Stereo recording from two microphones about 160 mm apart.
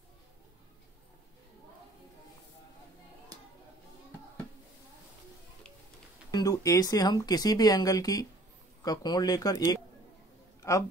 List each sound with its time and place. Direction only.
6.3 s speech: 20° left (ahead or behind)